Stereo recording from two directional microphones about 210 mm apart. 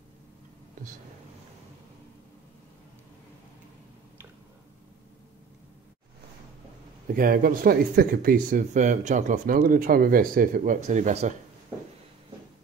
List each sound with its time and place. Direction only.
7.2 s speech: 45° right (ahead or behind)